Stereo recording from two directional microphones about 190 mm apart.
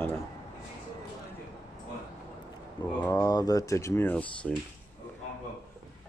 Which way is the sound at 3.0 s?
20° left (ahead or behind).